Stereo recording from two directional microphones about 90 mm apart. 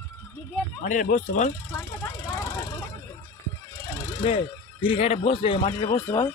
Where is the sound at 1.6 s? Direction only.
35° left (ahead or behind).